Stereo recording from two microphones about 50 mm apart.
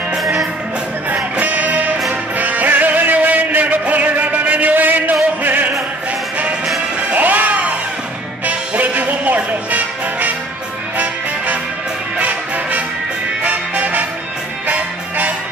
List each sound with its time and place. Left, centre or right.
1.1 s music: right
7.0 s music: right
12.2 s music: right